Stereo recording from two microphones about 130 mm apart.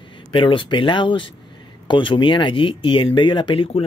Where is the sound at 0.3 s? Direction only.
40° left (ahead or behind).